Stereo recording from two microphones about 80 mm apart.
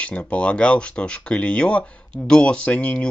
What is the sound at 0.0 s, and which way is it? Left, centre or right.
Speech, centre.